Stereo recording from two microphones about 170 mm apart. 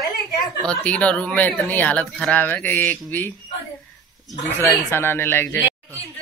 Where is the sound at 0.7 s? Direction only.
5° left (ahead or behind).